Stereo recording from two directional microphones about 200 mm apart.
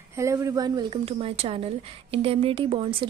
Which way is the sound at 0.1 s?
15° right (ahead or behind).